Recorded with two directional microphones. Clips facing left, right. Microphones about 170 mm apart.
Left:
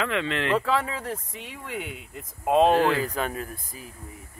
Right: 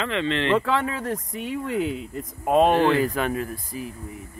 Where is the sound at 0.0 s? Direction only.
5° left (ahead or behind).